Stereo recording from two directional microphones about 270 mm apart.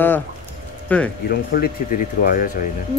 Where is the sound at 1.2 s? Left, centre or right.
Left.